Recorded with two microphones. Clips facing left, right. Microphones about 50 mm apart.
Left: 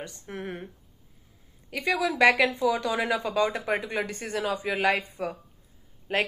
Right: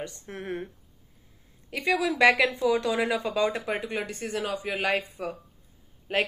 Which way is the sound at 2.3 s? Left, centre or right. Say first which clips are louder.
Left 1 dB; left.